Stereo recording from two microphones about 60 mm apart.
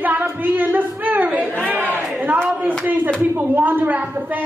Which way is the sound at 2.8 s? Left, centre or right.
Right.